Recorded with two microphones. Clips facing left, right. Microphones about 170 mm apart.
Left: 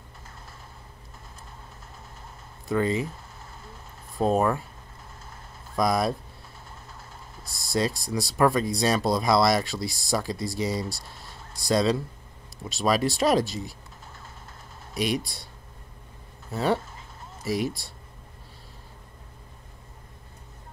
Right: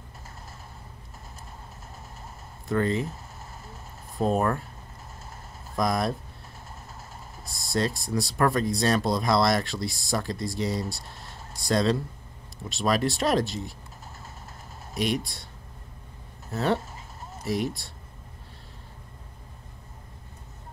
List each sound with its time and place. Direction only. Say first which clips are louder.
2.7 s speech: left 1 dB; 5° left (ahead or behind)
4.2 s speech: left 2 dB; centre (ahead or behind)
5.8 s speech: left 2 dB; 5° left (ahead or behind)
7.7 s speech: even; 5° left (ahead or behind)
16.5 s speech: left 1 dB; 5° left (ahead or behind)